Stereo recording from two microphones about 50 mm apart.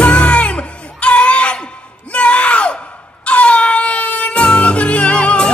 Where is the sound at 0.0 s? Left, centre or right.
Left.